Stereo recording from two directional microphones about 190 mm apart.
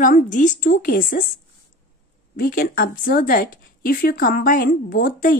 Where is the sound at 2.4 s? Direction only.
50° left (ahead or behind).